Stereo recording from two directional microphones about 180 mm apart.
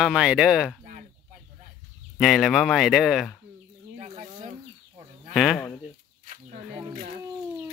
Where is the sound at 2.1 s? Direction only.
Centre (ahead or behind).